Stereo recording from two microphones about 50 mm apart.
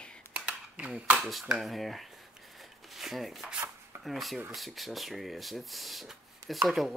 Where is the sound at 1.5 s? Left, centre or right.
Centre.